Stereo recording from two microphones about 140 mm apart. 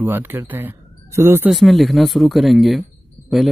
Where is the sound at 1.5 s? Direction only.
Centre (ahead or behind).